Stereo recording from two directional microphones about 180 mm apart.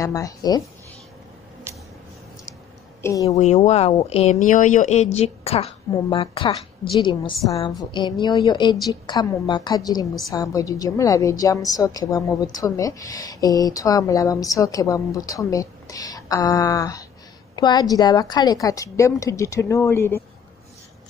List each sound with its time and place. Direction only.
0.0 s a woman's voice: 20° left (ahead or behind)
3.0 s a woman's voice: 15° left (ahead or behind)
3.3 s a woman's voice: 40° left (ahead or behind); by 20.2 s 15° left (ahead or behind)